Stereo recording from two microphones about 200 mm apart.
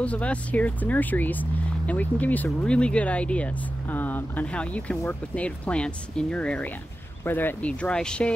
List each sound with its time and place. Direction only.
0.0 s speech: 5° left (ahead or behind)